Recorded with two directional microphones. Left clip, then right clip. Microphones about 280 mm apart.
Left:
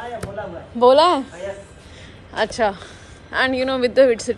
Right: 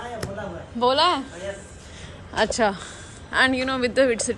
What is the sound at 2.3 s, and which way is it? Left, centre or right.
A woman's voice, centre.